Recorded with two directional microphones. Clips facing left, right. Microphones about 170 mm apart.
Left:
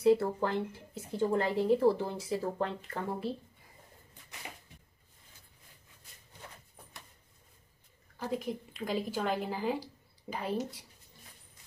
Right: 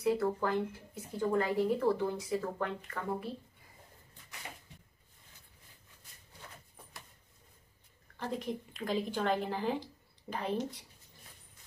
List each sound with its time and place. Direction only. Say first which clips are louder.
0.0 s speech: left 4 dB; 30° left (ahead or behind)
8.2 s a woman's voice: left 2 dB; 5° left (ahead or behind)